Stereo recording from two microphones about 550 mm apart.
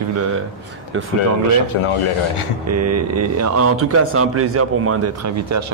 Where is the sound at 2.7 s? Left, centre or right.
Right.